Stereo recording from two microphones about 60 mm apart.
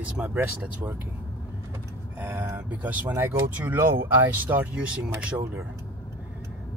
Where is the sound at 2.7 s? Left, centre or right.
Right.